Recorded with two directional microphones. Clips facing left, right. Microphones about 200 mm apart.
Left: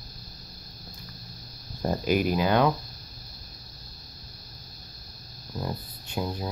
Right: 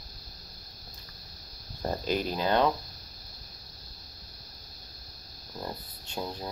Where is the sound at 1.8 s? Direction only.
10° left (ahead or behind).